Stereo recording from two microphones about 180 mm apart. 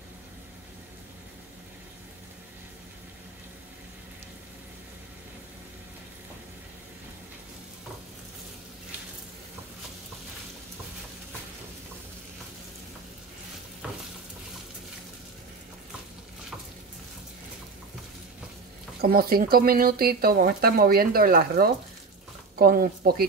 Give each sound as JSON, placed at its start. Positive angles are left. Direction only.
{"t": 18.9, "sound": "speech", "side_deg": -55}